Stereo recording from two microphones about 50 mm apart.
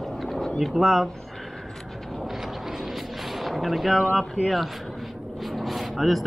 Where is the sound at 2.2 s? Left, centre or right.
Centre.